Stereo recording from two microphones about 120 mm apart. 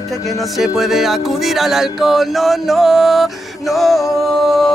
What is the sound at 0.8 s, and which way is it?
Speech, centre (ahead or behind).